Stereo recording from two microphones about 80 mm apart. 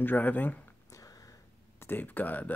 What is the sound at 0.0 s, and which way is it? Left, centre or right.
Speech, left.